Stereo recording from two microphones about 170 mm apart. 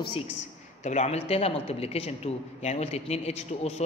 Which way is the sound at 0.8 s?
45° left (ahead or behind).